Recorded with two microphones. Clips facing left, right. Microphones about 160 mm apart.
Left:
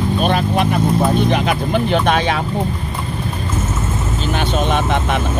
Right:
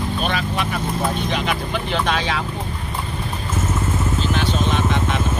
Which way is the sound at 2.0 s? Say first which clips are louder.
Left 5 dB; 55° left (ahead or behind).